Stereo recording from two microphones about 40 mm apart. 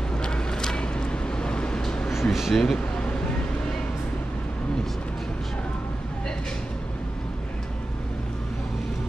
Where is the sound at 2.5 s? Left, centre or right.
Centre.